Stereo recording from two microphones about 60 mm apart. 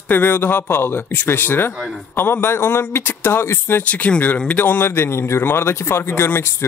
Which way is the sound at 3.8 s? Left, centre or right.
Left.